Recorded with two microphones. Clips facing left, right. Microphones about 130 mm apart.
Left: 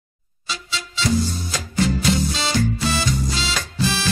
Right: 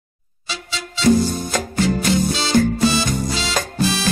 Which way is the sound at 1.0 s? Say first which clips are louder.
Right 7 dB; 50° right (ahead or behind).